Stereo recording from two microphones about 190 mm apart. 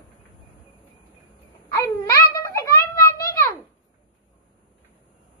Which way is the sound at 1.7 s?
15° left (ahead or behind).